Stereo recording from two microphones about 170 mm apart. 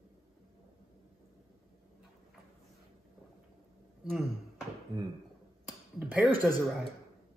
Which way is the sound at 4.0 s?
Centre (ahead or behind).